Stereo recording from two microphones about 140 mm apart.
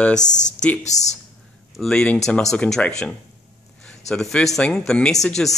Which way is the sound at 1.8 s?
5° left (ahead or behind).